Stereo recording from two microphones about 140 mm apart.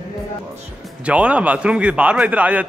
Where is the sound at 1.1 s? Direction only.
10° right (ahead or behind).